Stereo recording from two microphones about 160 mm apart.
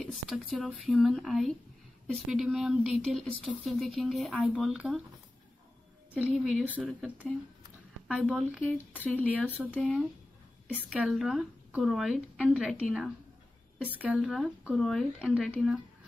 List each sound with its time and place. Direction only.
0.0 s speech: centre (ahead or behind)
6.1 s a woman's voice: 10° right (ahead or behind)
9.0 s speech: 10° left (ahead or behind)